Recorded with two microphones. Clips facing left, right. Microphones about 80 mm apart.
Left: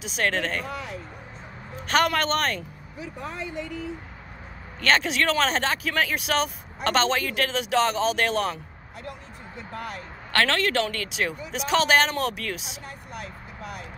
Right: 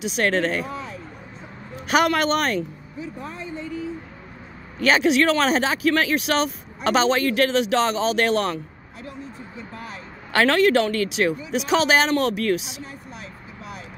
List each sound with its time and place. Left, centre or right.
0.0 s speech: centre
0.7 s speech: left
1.8 s speech: centre
3.0 s a sound: left
4.7 s speech: centre
9.6 s music: left
10.3 s speech: centre